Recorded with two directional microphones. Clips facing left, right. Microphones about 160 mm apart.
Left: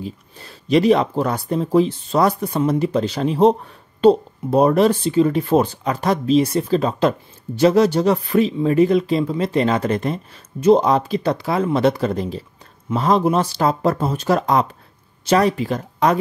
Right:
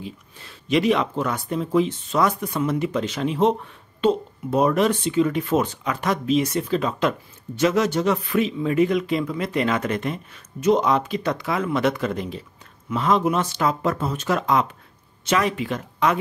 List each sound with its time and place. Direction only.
0.0 s speech: 40° left (ahead or behind)